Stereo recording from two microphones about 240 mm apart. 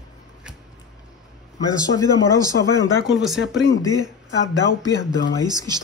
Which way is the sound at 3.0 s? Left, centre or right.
Centre.